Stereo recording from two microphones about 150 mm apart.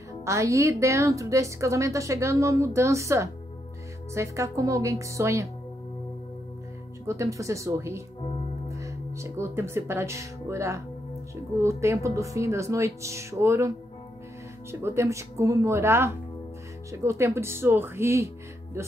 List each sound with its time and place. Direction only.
0.2 s a woman's voice: 20° right (ahead or behind)
7.1 s a woman's voice: 20° right (ahead or behind)